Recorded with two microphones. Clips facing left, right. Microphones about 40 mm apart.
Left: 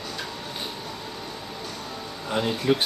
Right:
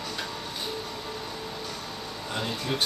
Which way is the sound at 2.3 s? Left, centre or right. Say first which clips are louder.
Left 8 dB; centre.